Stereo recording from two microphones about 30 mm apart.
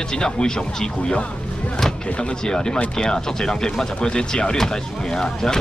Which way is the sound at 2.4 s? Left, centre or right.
Left.